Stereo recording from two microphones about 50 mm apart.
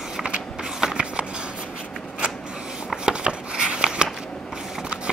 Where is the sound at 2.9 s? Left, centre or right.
Centre.